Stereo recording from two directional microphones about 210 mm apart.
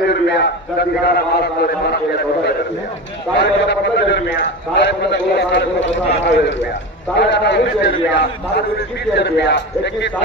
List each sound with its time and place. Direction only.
0.1 s a man's voice: 55° left (ahead or behind)
3.3 s a man's voice: 55° left (ahead or behind)